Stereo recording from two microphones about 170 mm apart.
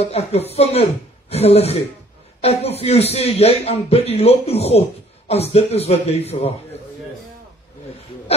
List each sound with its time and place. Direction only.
0.0 s a man's voice: 40° left (ahead or behind)